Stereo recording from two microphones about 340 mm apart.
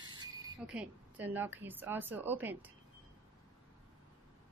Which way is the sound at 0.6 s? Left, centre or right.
Centre.